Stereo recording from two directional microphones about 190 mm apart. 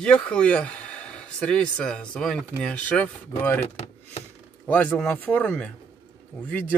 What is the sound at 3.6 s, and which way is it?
Speech, 35° left (ahead or behind).